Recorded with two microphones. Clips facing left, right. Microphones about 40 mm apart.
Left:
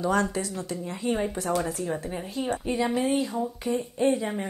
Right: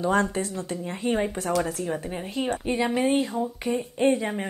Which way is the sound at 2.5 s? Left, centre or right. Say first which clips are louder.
Even; right.